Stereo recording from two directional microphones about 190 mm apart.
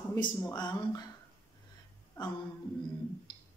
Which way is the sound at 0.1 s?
15° left (ahead or behind).